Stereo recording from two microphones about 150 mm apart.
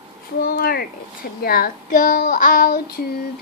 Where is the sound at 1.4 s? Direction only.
75° left (ahead or behind).